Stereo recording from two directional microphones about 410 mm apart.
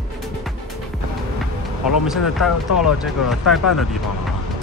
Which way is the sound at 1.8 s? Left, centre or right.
Centre.